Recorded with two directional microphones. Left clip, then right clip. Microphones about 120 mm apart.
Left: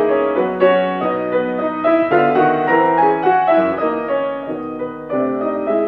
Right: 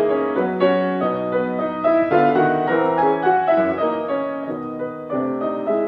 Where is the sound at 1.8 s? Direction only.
30° left (ahead or behind).